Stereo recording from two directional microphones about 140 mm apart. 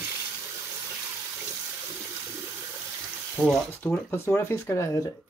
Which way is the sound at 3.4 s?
5° left (ahead or behind).